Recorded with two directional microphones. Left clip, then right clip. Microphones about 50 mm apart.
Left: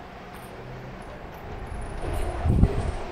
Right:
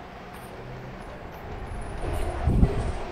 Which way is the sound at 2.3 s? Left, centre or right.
Centre.